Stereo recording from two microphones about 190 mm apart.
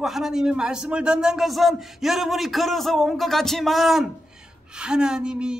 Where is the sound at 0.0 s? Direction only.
Centre (ahead or behind).